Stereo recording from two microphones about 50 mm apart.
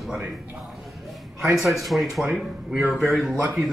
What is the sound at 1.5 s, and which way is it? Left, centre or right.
Speech, centre.